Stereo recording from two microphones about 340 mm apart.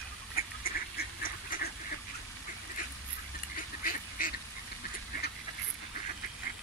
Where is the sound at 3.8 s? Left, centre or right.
Left.